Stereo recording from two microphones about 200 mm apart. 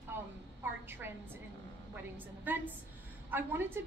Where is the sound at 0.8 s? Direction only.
10° right (ahead or behind).